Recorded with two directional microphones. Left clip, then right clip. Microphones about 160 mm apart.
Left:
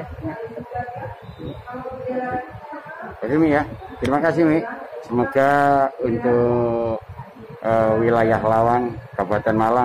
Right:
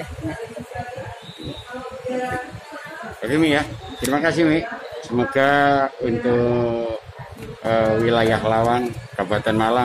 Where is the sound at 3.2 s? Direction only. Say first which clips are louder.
Left 1 dB; 20° right (ahead or behind).